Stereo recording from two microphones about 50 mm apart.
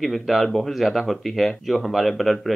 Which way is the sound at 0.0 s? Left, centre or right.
Centre.